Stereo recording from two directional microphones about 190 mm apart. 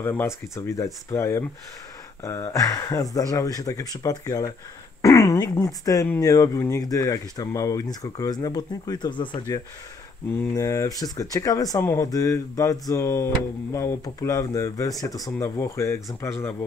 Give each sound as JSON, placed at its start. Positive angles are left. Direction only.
{"t": 0.0, "sound": "speech", "side_deg": 10}